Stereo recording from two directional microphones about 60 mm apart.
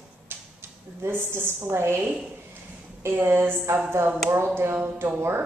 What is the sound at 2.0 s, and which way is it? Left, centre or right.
Speech, right.